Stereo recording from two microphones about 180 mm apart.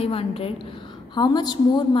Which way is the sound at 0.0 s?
35° left (ahead or behind).